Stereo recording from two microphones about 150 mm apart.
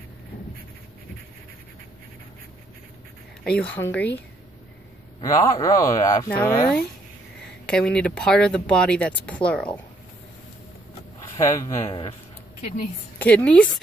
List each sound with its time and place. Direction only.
3.4 s speech: 10° left (ahead or behind)
5.2 s speech: 20° left (ahead or behind)
7.6 s speech: 5° left (ahead or behind)
11.3 s speech: 20° left (ahead or behind)
13.2 s speech: 10° left (ahead or behind)